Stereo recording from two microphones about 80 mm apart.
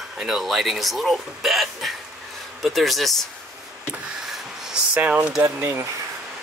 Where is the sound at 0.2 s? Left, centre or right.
Centre.